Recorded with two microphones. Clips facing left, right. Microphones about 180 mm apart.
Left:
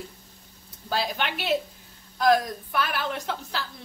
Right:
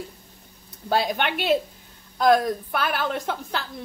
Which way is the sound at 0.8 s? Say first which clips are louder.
Right 5 dB; 60° right (ahead or behind).